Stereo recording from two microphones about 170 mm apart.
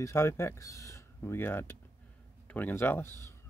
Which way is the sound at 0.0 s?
15° left (ahead or behind).